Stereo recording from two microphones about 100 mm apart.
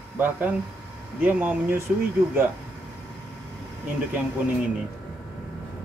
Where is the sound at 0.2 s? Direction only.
20° right (ahead or behind).